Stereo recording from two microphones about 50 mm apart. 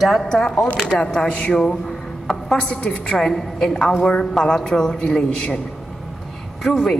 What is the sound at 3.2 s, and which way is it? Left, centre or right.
Speech, centre.